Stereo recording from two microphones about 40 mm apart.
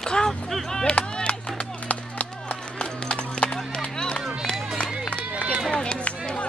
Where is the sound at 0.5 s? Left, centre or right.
Centre.